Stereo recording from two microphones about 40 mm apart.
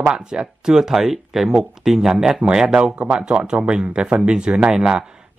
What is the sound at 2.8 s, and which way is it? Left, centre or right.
Speech, right.